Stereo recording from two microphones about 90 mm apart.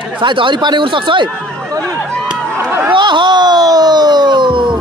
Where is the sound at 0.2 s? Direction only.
60° right (ahead or behind).